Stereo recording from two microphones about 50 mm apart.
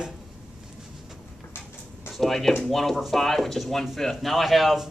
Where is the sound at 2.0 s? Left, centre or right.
Centre.